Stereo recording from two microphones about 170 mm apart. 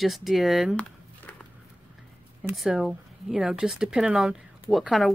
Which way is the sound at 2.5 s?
Centre (ahead or behind).